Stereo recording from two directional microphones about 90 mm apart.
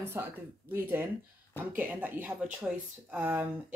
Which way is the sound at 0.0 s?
25° right (ahead or behind).